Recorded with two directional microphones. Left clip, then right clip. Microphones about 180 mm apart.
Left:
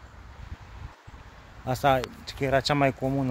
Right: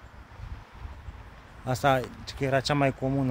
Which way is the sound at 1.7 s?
15° left (ahead or behind).